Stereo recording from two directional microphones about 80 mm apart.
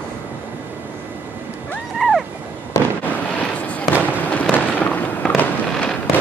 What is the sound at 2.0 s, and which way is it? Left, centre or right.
Cat, centre.